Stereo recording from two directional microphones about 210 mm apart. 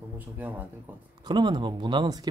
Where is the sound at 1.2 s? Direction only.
20° right (ahead or behind).